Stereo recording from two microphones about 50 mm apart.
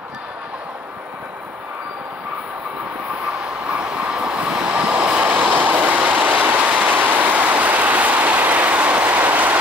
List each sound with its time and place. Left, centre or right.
3.7 s train: centre
4.4 s vehicle: centre
6.7 s train: right
7.0 s a sound: right